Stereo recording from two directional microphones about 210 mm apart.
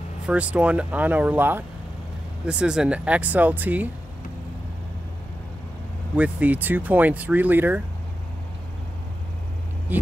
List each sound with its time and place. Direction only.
0.3 s speech: 5° right (ahead or behind)
6.1 s speech: 5° right (ahead or behind)
9.9 s speech: 10° right (ahead or behind)